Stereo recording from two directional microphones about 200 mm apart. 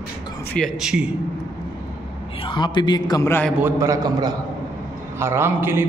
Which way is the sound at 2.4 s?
25° left (ahead or behind).